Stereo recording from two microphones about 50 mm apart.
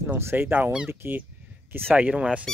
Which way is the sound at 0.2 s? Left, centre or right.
Right.